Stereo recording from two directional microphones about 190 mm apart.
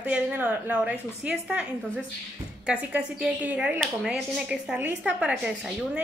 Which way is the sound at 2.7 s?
5° right (ahead or behind).